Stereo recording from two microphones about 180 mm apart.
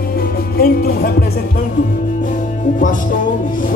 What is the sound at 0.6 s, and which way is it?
Speech, 55° left (ahead or behind).